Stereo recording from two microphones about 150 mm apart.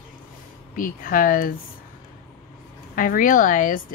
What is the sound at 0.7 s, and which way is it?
Speech, 65° left (ahead or behind).